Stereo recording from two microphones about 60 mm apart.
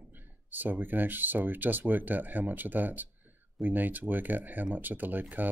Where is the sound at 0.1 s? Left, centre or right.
Right.